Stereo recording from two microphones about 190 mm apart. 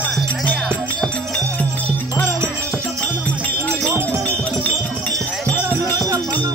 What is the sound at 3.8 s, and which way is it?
Wind chime, 15° right (ahead or behind).